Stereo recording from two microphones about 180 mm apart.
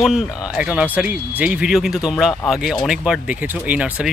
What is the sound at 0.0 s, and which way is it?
Speech, 5° right (ahead or behind).